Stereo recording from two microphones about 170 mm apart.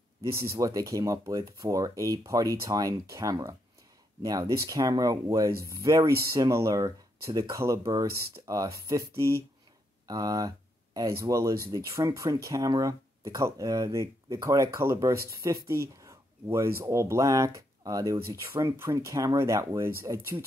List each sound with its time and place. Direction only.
0.2 s speech: 15° right (ahead or behind)